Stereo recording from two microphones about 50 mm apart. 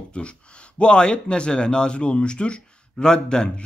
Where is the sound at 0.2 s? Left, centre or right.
Left.